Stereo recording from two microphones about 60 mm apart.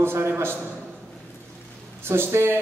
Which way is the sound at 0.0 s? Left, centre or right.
Right.